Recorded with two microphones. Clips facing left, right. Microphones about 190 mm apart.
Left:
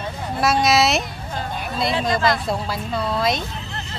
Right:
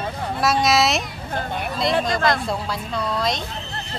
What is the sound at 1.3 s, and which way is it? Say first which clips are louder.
Speech: right 2 dB; 60° right (ahead or behind).